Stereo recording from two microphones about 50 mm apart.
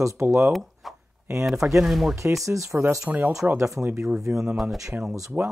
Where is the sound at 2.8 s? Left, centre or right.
Right.